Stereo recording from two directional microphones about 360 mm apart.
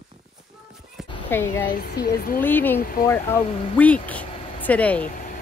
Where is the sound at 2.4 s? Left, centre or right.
Centre.